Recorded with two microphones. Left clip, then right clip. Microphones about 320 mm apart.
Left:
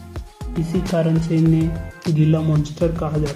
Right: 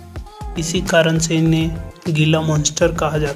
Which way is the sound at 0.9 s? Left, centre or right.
Right.